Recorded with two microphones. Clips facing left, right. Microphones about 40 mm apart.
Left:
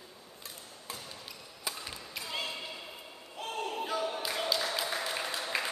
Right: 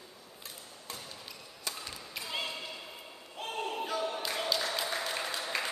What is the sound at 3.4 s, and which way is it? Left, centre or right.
Music, centre.